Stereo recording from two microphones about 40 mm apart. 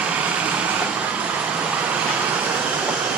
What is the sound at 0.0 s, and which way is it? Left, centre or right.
Vehicle, right.